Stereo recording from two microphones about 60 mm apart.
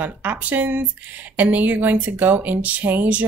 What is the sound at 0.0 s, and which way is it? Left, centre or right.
Speech, right.